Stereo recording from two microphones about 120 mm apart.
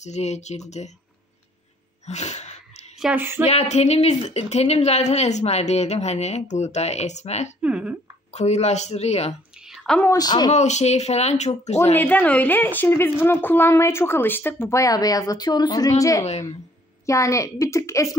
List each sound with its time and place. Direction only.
0.0 s speech: 70° left (ahead or behind)
2.0 s a sound: 70° left (ahead or behind)
3.0 s a sound: 10° right (ahead or behind)
3.4 s speech: 65° left (ahead or behind)
7.6 s speech: 10° right (ahead or behind)
8.3 s speech: 70° left (ahead or behind)
9.6 s a sound: 5° right (ahead or behind)
10.1 s speech: 35° left (ahead or behind)
10.5 s speech: 70° left (ahead or behind)
11.9 s a woman's voice: 15° left (ahead or behind)